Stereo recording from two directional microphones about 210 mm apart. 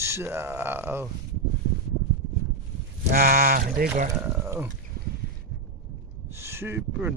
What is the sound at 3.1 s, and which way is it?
Speech, 45° right (ahead or behind).